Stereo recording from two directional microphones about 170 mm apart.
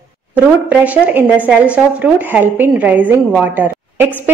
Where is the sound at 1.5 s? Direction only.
10° right (ahead or behind).